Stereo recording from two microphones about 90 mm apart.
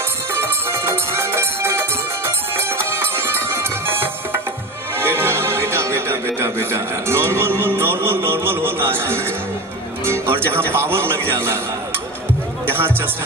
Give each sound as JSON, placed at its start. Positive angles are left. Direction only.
{"t": 0.4, "sound": "music", "side_deg": -25}
{"t": 3.2, "sound": "music", "side_deg": -25}
{"t": 12.6, "sound": "music", "side_deg": -25}